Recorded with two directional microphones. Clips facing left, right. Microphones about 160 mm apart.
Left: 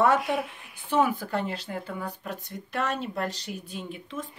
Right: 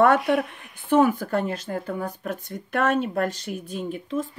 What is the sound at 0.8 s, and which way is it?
Speech, 50° right (ahead or behind).